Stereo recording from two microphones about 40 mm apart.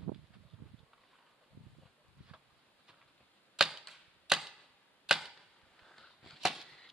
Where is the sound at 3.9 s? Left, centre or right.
Centre.